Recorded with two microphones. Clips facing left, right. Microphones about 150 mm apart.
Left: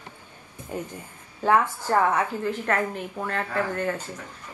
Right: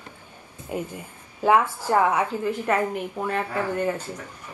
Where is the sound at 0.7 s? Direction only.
10° right (ahead or behind).